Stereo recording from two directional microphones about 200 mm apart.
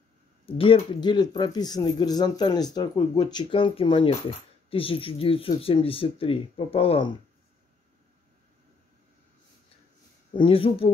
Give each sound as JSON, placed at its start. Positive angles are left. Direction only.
{"t": 0.5, "sound": "speech", "side_deg": 25}
{"t": 10.3, "sound": "speech", "side_deg": 25}